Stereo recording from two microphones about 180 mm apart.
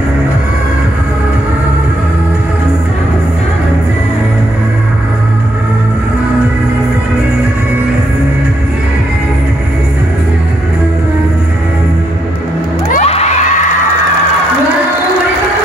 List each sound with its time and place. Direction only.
12.9 s children shouting: 35° left (ahead or behind)